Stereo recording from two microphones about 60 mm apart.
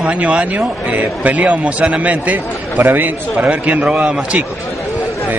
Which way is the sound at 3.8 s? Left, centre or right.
Centre.